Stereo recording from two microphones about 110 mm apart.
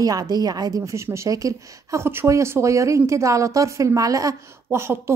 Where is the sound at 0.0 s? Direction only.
35° right (ahead or behind).